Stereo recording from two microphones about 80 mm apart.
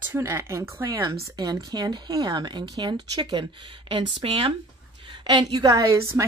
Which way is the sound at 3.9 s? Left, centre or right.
Right.